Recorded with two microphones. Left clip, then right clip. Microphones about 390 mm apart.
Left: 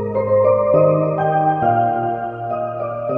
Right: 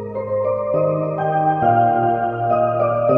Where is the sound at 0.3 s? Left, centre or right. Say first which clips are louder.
Left 6 dB; left.